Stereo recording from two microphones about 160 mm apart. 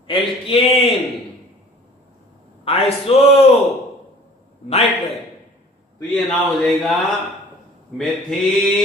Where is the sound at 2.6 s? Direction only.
40° left (ahead or behind).